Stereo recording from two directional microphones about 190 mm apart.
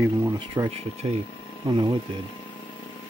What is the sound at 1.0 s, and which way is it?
Speech, 25° right (ahead or behind).